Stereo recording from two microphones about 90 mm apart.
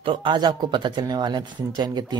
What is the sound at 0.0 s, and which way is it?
Speech, 70° right (ahead or behind).